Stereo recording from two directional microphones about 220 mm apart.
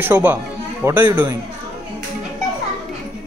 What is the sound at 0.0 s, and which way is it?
A man's voice, 10° right (ahead or behind).